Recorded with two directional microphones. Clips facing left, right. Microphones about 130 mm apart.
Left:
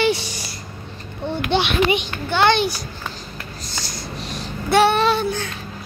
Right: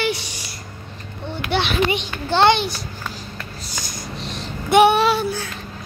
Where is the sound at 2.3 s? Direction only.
35° right (ahead or behind).